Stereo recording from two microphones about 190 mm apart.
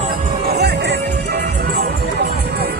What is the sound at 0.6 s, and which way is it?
Music, 60° right (ahead or behind).